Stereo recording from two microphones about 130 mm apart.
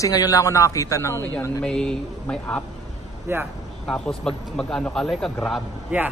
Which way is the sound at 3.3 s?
15° right (ahead or behind).